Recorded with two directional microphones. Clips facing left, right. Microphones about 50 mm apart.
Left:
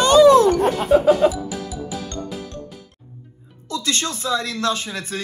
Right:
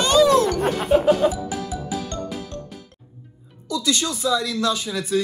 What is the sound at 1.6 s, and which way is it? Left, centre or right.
Music, centre.